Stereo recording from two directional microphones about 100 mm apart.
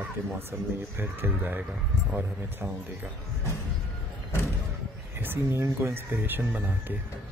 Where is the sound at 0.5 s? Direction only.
25° right (ahead or behind).